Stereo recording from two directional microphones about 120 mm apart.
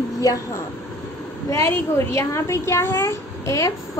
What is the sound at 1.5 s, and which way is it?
A woman's voice, 20° left (ahead or behind).